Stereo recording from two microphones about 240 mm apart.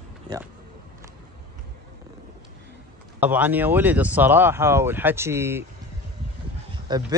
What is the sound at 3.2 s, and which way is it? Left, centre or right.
Speech, centre.